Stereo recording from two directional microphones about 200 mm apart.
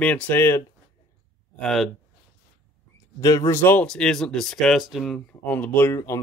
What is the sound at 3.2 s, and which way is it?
Speech, 20° left (ahead or behind).